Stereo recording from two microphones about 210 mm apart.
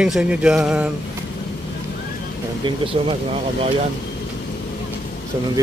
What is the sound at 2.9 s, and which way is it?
Speech, 25° right (ahead or behind).